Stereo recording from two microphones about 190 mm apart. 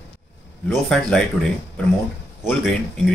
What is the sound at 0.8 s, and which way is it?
A man's voice, 5° left (ahead or behind).